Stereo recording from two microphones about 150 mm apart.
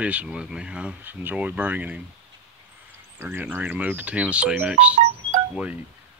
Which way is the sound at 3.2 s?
15° right (ahead or behind).